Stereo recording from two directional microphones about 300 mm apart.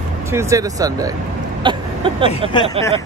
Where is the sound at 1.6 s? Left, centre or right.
Centre.